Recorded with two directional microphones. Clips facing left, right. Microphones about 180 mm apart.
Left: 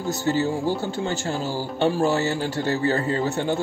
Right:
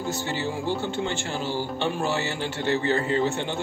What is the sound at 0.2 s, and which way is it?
Speech, 40° left (ahead or behind).